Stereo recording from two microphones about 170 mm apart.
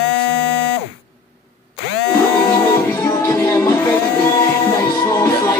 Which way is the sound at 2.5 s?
15° left (ahead or behind).